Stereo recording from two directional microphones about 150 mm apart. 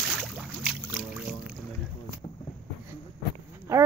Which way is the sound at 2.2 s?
35° left (ahead or behind).